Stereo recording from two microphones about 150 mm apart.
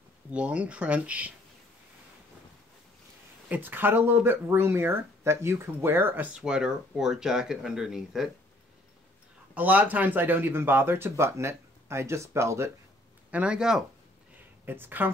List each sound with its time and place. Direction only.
0.3 s speech: 10° right (ahead or behind)
3.4 s speech: 10° right (ahead or behind)
9.5 s speech: 10° right (ahead or behind)
13.3 s speech: 5° right (ahead or behind)